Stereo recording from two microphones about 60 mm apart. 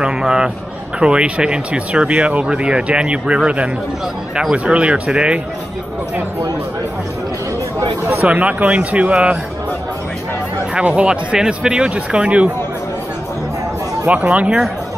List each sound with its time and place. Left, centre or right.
0.0 s a man's voice: centre
8.3 s speech: right
10.7 s speech: right
14.0 s speech: right